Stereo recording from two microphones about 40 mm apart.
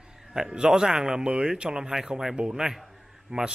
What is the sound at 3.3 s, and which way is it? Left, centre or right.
Speech, right.